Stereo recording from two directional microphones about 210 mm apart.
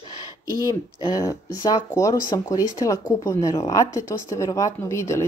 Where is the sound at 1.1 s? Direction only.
15° left (ahead or behind).